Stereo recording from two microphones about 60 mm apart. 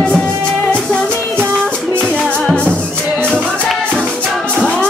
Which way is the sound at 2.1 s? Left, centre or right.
Centre.